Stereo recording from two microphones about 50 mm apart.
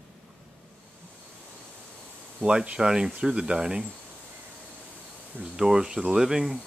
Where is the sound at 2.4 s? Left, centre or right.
Centre.